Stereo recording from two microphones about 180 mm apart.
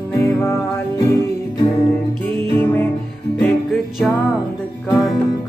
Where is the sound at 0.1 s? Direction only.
15° left (ahead or behind).